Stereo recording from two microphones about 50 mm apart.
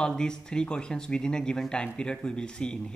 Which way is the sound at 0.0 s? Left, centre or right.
Centre.